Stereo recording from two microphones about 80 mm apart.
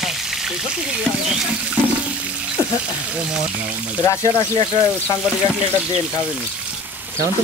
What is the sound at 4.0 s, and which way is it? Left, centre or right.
Speech, left.